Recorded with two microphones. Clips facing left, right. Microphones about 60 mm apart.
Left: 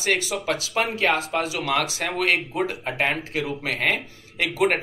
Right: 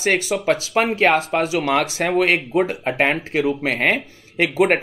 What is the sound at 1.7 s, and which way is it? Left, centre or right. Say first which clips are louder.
Speech: right 5 dB; right.